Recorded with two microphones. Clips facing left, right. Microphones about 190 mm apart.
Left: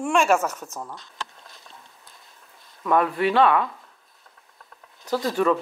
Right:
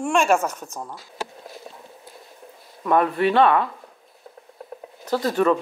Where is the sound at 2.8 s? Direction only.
30° right (ahead or behind).